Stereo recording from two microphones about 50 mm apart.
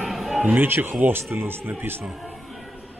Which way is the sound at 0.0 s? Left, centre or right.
Centre.